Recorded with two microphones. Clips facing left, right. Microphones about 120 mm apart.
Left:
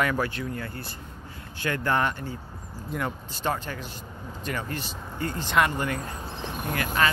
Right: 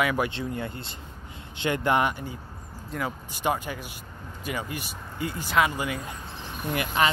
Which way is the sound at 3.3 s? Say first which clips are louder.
Right 3 dB; 15° right (ahead or behind).